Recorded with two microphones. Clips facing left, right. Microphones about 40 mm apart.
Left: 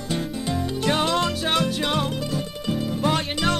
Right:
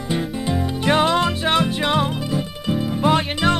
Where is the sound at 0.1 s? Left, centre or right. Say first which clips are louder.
Right 4 dB; centre.